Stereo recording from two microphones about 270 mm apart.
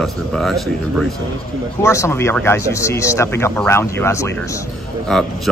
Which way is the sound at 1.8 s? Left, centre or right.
Centre.